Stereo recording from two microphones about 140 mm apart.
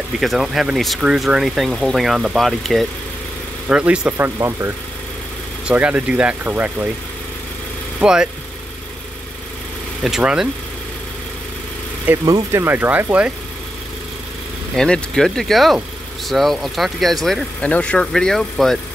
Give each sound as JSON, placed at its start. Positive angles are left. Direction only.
{"t": 0.2, "sound": "speech", "side_deg": 0}
{"t": 5.7, "sound": "speech", "side_deg": -10}
{"t": 8.0, "sound": "speech", "side_deg": -5}
{"t": 10.0, "sound": "speech", "side_deg": -5}
{"t": 12.3, "sound": "speech", "side_deg": -25}
{"t": 12.6, "sound": "speech", "side_deg": -15}
{"t": 14.8, "sound": "speech", "side_deg": 5}